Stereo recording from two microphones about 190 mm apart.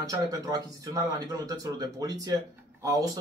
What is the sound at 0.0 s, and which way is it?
A man's voice, 20° right (ahead or behind).